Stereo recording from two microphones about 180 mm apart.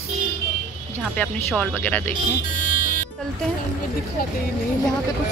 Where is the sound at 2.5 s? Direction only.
45° left (ahead or behind).